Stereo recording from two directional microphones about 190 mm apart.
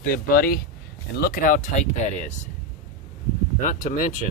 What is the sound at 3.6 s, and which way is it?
Speech, 45° left (ahead or behind).